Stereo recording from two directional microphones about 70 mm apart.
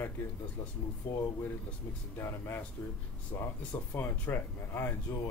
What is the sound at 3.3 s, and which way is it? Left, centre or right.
A man's voice, left.